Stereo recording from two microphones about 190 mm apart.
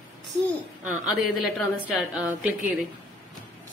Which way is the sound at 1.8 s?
5° right (ahead or behind).